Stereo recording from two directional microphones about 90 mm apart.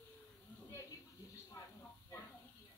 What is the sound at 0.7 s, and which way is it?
Speech, 35° left (ahead or behind).